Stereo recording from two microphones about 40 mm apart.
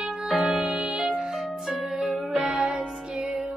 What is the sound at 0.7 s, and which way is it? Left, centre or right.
Music, right.